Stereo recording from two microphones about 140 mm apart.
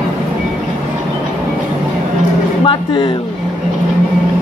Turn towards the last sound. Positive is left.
turn(degrees=35)  # may be behind; listen again after turning